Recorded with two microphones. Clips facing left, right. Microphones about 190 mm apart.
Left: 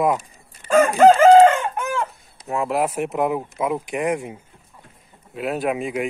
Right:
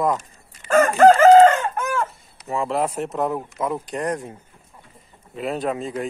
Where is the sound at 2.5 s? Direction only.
5° left (ahead or behind).